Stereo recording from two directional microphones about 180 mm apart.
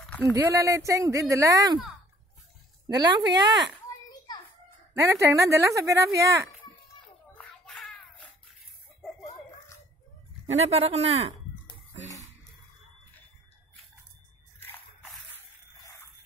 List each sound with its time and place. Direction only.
0.2 s speech: 15° right (ahead or behind)
2.9 s speech: 20° right (ahead or behind)
4.9 s speech: 15° right (ahead or behind)
7.3 s a sound: 5° left (ahead or behind)
10.5 s speech: 35° right (ahead or behind)
14.6 s drip: 10° left (ahead or behind)